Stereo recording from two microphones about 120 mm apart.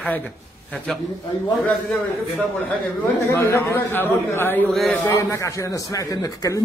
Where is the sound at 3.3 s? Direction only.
25° left (ahead or behind).